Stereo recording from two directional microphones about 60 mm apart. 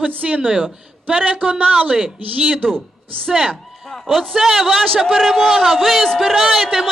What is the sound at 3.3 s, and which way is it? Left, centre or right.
Speech, centre.